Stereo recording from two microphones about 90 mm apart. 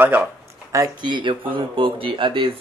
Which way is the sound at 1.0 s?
60° right (ahead or behind).